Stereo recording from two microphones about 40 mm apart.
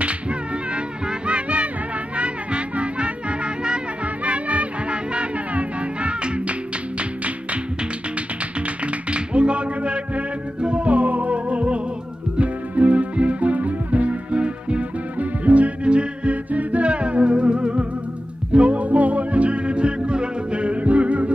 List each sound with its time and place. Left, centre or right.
0.7 s music: right
4.2 s music: right
8.8 s music: right